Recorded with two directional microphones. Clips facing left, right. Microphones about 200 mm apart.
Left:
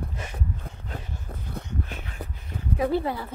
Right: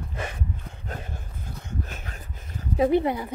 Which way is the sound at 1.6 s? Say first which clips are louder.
Right 3 dB; 45° right (ahead or behind).